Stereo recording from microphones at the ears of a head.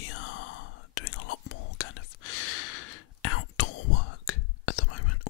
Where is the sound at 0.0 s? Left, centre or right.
Left.